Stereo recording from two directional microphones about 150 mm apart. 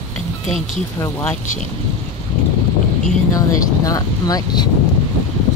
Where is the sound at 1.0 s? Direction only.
20° left (ahead or behind).